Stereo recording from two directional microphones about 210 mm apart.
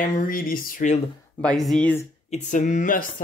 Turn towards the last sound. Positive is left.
turn(degrees=40)  # may be behind; listen again after turning